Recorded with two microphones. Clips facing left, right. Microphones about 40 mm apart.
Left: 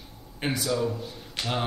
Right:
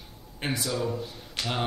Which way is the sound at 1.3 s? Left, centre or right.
Centre.